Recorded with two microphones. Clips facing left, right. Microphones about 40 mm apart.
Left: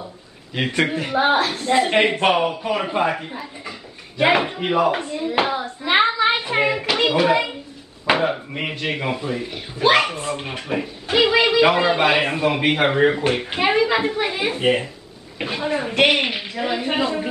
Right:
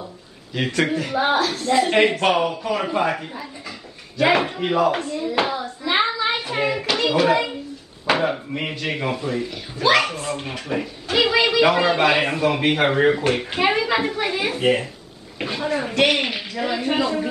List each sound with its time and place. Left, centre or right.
0.6 s speech: centre
6.1 s a sound: left
6.6 s a child's voice: centre
9.4 s speech: left